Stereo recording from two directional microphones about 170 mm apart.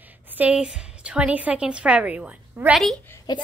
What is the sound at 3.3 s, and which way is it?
Speech, 25° left (ahead or behind).